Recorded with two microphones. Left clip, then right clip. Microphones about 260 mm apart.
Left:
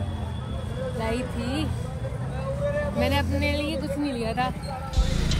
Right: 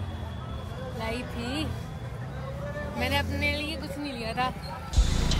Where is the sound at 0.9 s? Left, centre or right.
Centre.